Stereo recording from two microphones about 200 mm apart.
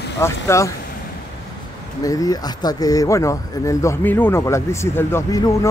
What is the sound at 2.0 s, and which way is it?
Speech, 20° left (ahead or behind).